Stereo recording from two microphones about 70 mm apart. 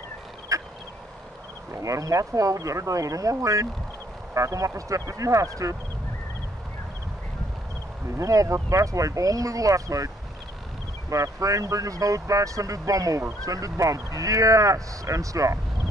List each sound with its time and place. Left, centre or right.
0.5 s fowl: right
1.7 s speech: right
8.2 s speech: right